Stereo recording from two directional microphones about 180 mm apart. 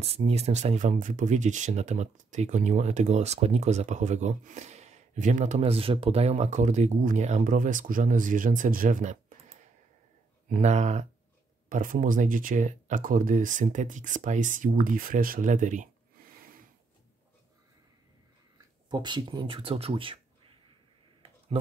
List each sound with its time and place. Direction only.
0.0 s speech: 35° right (ahead or behind)
10.5 s speech: 40° right (ahead or behind)
18.9 s speech: 25° right (ahead or behind)